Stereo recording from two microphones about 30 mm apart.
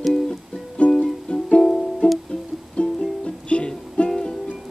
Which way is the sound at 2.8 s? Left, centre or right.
Left.